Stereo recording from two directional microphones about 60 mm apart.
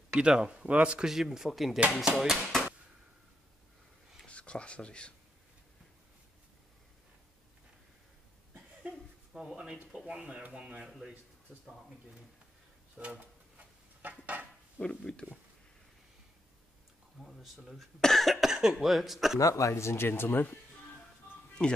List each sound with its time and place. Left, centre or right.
0.2 s speech: centre
1.0 s speech: centre
4.3 s speech: centre
8.8 s a sound: centre
9.9 s speech: centre
10.2 s speech: right
12.9 s a sound: right
14.8 s speech: centre
17.2 s a sound: centre
18.0 s speech: centre
19.4 s speech: left
21.6 s speech: centre